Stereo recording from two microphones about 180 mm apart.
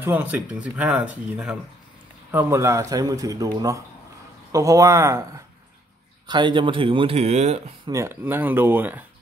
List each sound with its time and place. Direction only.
0.0 s a man's voice: 10° right (ahead or behind); by 7.6 s 35° right (ahead or behind)
7.8 s speech: 15° right (ahead or behind)